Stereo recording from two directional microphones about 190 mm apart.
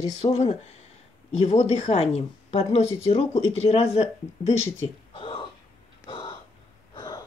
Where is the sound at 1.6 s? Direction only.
35° left (ahead or behind).